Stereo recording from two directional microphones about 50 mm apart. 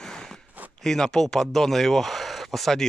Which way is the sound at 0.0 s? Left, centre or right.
Centre.